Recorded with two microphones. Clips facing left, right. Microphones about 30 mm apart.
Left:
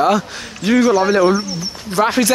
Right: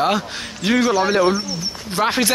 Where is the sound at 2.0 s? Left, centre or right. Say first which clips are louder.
Left 3 dB; right.